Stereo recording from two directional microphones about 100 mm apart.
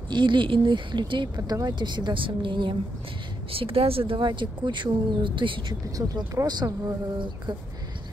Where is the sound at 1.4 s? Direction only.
40° right (ahead or behind); by 2.8 s 55° right (ahead or behind).